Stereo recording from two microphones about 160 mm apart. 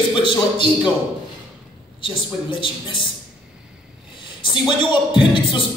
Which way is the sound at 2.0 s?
30° left (ahead or behind).